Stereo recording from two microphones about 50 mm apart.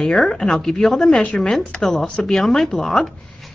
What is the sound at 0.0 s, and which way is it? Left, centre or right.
A woman's voice, centre.